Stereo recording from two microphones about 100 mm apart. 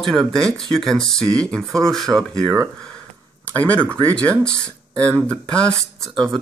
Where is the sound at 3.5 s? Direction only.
15° left (ahead or behind).